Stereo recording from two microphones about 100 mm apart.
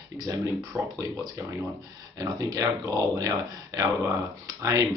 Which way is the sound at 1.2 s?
30° right (ahead or behind).